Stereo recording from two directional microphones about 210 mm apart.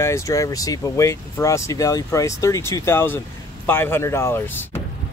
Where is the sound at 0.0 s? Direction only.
15° left (ahead or behind).